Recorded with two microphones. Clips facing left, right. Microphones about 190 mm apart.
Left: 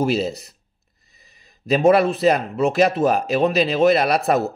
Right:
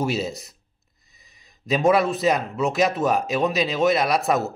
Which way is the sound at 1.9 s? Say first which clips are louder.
Left 4 dB; 60° left (ahead or behind).